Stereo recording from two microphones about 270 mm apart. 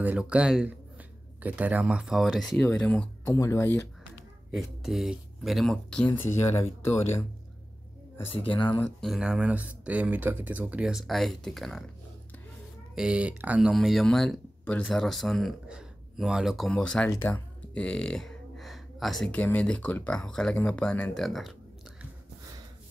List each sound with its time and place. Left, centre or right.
0.0 s speech: centre
8.3 s speech: centre
8.8 s speech: centre
12.9 s speech: centre